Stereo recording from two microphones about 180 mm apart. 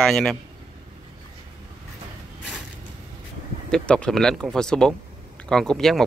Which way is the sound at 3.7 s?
5° left (ahead or behind).